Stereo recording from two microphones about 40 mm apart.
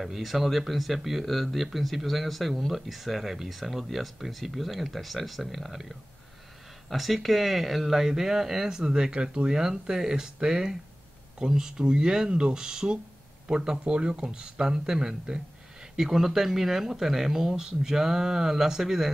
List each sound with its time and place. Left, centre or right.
0.0 s speech: centre